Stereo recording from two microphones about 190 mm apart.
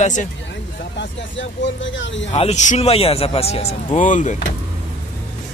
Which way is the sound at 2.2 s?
35° left (ahead or behind).